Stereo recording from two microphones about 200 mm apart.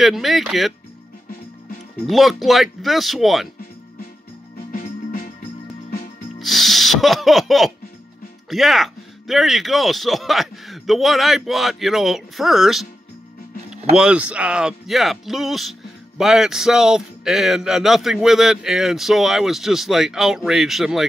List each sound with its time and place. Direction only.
0.0 s a man's voice: centre (ahead or behind)
2.0 s a man's voice: centre (ahead or behind)
4.7 s music: 45° left (ahead or behind)
6.4 s music: centre (ahead or behind)
8.5 s a man's voice: centre (ahead or behind)